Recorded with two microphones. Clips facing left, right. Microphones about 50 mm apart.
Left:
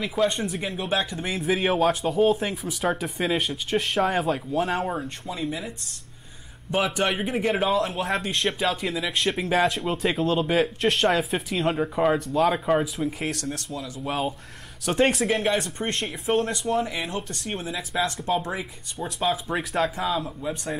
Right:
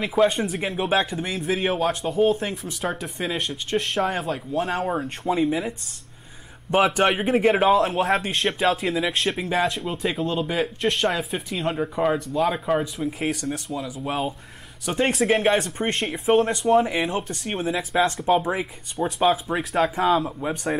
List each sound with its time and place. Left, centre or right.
0.0 s speech: centre
1.1 s speech: centre
5.4 s speech: centre
6.7 s speech: right
7.2 s speech: centre
14.9 s speech: centre
16.5 s speech: right
17.5 s speech: right
18.3 s speech: centre
19.3 s speech: centre
20.1 s speech: right